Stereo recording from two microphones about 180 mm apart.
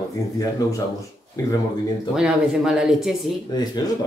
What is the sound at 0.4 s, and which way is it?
Ding, 20° left (ahead or behind).